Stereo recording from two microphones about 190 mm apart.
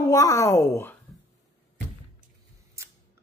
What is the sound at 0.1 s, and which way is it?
Speech, 15° left (ahead or behind).